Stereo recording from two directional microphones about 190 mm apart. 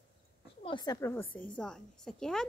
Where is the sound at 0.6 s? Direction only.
25° left (ahead or behind); by 2.5 s 5° left (ahead or behind).